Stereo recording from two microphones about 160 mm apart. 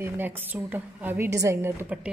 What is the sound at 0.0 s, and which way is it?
A woman's voice, 15° right (ahead or behind).